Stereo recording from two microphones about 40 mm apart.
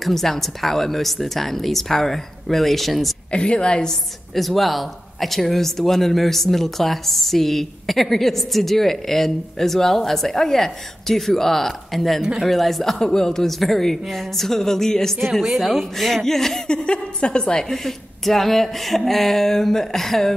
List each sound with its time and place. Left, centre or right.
0.0 s a woman's voice: centre
3.3 s a woman's voice: left
4.4 s a woman's voice: centre
13.0 s speech: centre
15.4 s a woman's voice: centre
16.6 s speech: left; by 20.3 s centre